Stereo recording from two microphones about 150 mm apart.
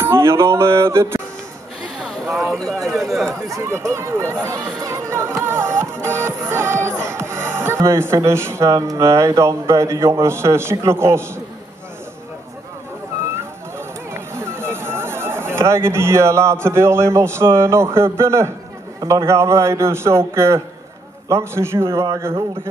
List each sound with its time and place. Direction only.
0.0 s a man's voice: 15° right (ahead or behind)
2.2 s a man's voice: centre (ahead or behind)
3.4 s speech: 20° right (ahead or behind)
13.7 s a man's voice: 15° right (ahead or behind)